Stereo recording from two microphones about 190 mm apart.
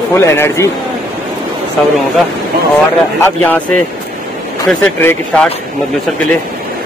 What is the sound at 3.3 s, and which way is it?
Speech, 10° left (ahead or behind).